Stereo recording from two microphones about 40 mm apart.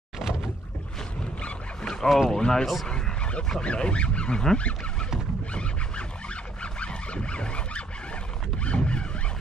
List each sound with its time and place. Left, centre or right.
2.0 s speech: centre
2.3 s speech: centre
2.6 s speech: centre
3.6 s speech: left
5.5 s a sound: left
8.6 s zipper: left